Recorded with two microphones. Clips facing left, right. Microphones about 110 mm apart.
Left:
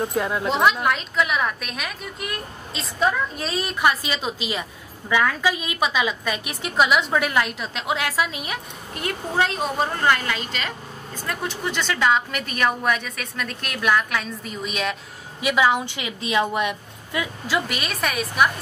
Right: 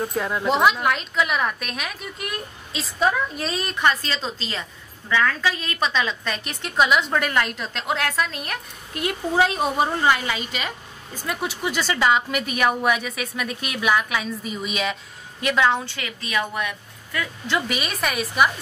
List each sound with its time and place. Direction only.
0.0 s a woman's voice: 5° left (ahead or behind)
17.5 s a woman's voice: centre (ahead or behind)